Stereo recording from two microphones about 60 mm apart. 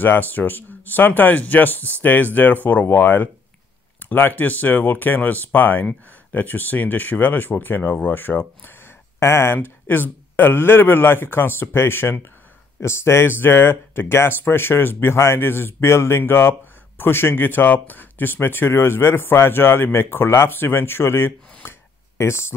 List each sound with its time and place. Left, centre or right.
0.0 s speech: left
8.6 s speech: left
21.6 s a sound: left